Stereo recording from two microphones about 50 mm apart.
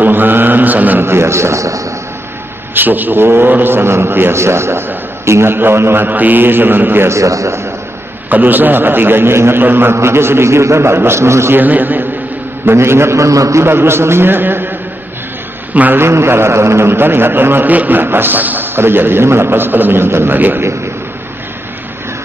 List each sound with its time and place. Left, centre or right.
0.0 s mantra: right
1.0 s a man's voice: right
2.7 s a man's voice: right
4.4 s a man's voice: right
6.0 s a man's voice: right
7.1 s a man's voice: right
8.3 s a man's voice: right
9.9 s a man's voice: right
11.5 s a man's voice: right
12.7 s a man's voice: right
13.7 s a man's voice: right
16.0 s a man's voice: right
18.8 s a man's voice: right
20.3 s a man's voice: right